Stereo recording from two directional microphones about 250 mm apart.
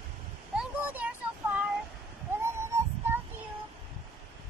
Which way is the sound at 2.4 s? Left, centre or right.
Centre.